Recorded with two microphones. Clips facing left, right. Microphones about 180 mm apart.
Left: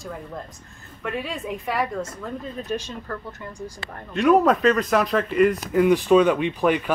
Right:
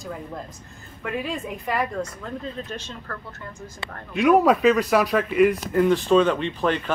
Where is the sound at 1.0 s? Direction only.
Centre (ahead or behind).